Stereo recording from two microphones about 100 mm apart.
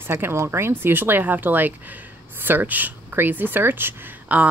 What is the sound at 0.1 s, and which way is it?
Speech, 25° right (ahead or behind).